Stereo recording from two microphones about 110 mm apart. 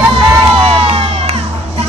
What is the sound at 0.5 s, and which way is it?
Music, 60° right (ahead or behind).